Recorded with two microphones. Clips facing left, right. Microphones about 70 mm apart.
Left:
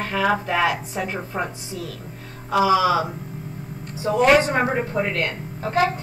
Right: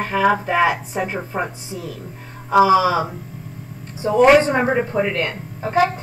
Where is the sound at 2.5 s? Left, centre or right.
Right.